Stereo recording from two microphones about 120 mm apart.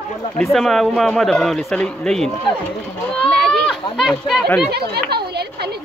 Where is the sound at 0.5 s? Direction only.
5° left (ahead or behind).